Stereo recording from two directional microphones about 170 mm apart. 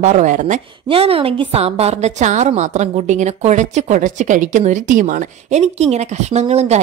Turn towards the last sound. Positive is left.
turn(degrees=-40)  # may be behind; listen again after turning